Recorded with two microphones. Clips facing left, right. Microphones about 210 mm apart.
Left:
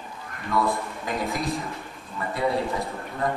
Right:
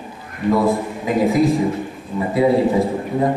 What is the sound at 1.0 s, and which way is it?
A man's voice, centre (ahead or behind).